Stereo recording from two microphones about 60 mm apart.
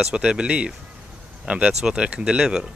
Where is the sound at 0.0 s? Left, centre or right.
Centre.